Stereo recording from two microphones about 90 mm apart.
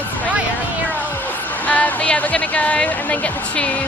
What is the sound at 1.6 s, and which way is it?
Speech, 15° left (ahead or behind).